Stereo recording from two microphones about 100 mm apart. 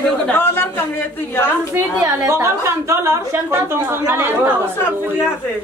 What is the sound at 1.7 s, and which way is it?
A woman's voice, 25° right (ahead or behind).